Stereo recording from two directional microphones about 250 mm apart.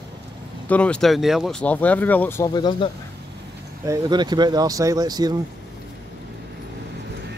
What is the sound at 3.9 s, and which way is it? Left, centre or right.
Speech, centre.